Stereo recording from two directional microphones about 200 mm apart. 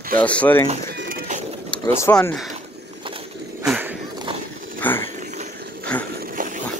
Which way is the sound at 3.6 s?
5° right (ahead or behind).